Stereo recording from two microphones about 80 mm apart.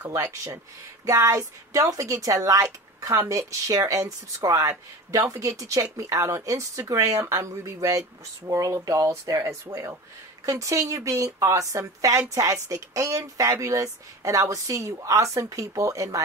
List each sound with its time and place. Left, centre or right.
0.3 s speech: right